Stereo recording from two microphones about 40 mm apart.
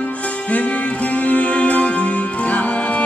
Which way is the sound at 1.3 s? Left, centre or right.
Left.